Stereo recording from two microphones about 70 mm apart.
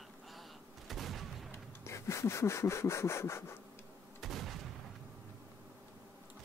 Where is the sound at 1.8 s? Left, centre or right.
Left.